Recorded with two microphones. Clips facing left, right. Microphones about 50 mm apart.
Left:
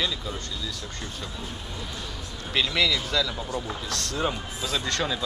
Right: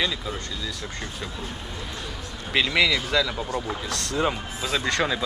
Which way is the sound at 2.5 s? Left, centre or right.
Centre.